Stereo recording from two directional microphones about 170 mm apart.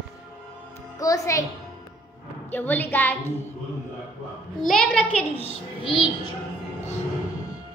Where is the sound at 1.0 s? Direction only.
20° left (ahead or behind).